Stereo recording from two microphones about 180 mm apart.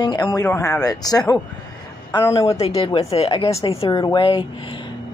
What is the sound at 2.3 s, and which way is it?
Speech, 35° left (ahead or behind).